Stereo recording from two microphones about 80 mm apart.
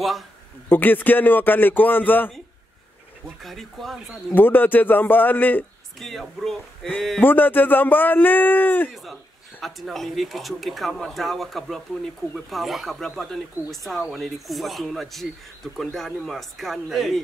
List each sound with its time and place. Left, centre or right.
0.7 s speech: left
3.4 s speech: centre
4.4 s speech: left
5.9 s speech: centre
7.2 s speech: left
9.6 s speech: centre